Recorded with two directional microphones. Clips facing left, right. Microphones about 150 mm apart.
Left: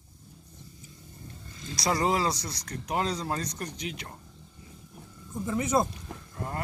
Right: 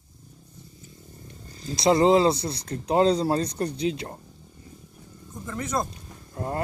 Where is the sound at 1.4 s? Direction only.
40° right (ahead or behind).